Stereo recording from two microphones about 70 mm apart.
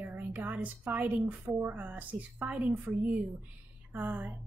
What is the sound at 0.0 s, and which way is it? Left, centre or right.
A woman's voice, right.